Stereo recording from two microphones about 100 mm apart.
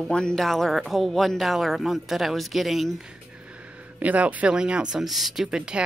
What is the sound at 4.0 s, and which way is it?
Speech, 15° right (ahead or behind).